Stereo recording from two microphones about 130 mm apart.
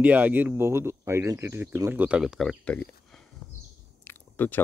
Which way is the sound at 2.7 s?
5° left (ahead or behind).